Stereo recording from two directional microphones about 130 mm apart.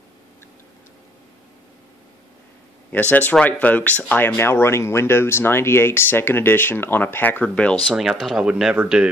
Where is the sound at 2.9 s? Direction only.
15° left (ahead or behind).